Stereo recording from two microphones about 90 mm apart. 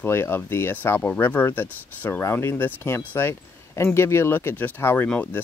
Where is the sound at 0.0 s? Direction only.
25° left (ahead or behind).